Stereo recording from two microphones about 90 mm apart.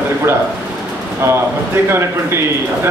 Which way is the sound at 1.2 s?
30° right (ahead or behind).